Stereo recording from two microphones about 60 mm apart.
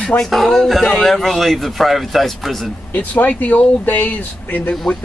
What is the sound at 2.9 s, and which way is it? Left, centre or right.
Speech, left.